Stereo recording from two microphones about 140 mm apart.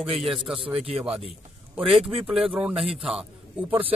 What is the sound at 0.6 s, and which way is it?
Speech, 40° right (ahead or behind).